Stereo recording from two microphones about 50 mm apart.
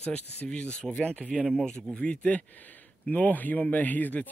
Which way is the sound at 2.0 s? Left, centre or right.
Left.